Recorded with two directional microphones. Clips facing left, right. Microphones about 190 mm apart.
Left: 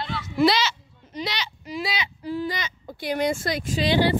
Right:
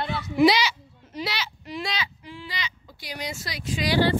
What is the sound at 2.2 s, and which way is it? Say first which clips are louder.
Speech: left 9 dB; 40° left (ahead or behind).